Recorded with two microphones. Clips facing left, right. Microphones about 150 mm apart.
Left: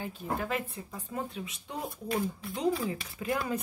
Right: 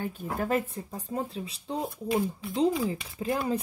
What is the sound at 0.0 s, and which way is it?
Speech, 50° right (ahead or behind).